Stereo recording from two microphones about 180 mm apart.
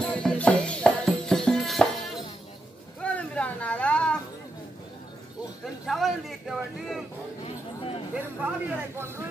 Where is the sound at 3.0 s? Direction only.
5° left (ahead or behind).